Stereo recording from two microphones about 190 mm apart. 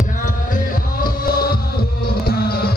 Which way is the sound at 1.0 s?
50° left (ahead or behind).